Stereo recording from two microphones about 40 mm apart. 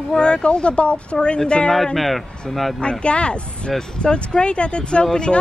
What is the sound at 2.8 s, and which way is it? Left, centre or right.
A woman's voice, left.